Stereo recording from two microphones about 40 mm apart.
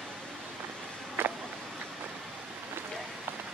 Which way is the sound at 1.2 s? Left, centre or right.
Right.